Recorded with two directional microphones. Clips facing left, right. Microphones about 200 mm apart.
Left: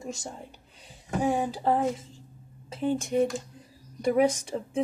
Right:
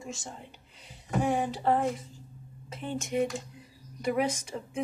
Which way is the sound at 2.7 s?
35° left (ahead or behind).